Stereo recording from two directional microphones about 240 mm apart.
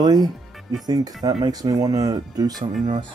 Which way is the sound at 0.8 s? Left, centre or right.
Centre.